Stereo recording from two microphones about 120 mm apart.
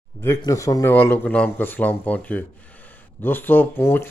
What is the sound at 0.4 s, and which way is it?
Speech, 30° left (ahead or behind).